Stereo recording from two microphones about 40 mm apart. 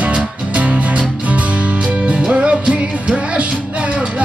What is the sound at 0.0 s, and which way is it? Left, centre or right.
Music, right.